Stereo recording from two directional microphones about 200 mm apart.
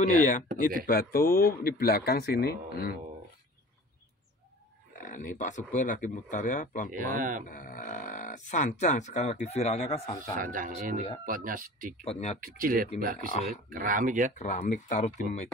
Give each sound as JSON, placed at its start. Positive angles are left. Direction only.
{"t": 0.0, "sound": "speech", "side_deg": 40}
{"t": 4.9, "sound": "speech", "side_deg": 40}
{"t": 6.9, "sound": "speech", "side_deg": -40}
{"t": 7.4, "sound": "speech", "side_deg": 45}
{"t": 10.3, "sound": "speech", "side_deg": -45}
{"t": 12.0, "sound": "speech", "side_deg": 30}
{"t": 12.4, "sound": "speech", "side_deg": -45}
{"t": 14.4, "sound": "speech", "side_deg": 40}